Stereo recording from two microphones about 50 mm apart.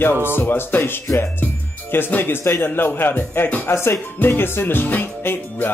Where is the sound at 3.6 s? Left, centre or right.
Left.